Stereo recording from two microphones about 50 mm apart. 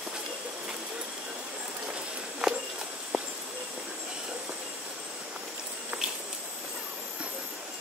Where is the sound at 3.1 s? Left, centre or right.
Centre.